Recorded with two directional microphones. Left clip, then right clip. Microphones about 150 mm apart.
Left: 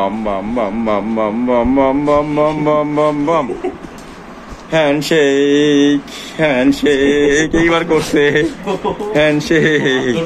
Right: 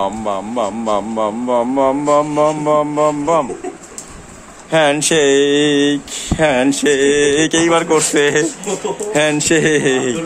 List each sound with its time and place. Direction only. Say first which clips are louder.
0.0 s a man's voice: left 1 dB; 25° right (ahead or behind)
2.6 s speech: left 1 dB; 15° right (ahead or behind)
4.6 s speech: even; 45° right (ahead or behind)
7.3 s a man's voice: left 1 dB; 30° right (ahead or behind)
9.1 s speech: left 1 dB; 50° right (ahead or behind); by 10.1 s 20° right (ahead or behind)